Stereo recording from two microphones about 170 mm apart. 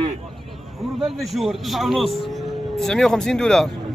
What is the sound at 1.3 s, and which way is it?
A man's voice, centre (ahead or behind).